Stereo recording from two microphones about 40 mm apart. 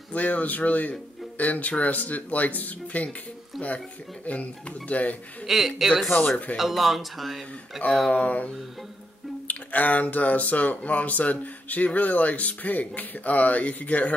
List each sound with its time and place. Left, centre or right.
0.1 s speech: left
4.3 s speech: left
5.5 s speech: centre
8.1 s speech: left
9.5 s speech: left